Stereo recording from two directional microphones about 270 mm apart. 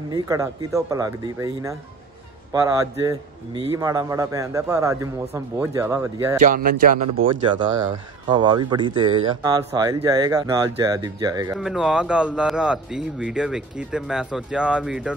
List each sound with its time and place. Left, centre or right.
0.1 s speech: centre
6.4 s music: right
8.3 s speech: centre
11.5 s a man's voice: centre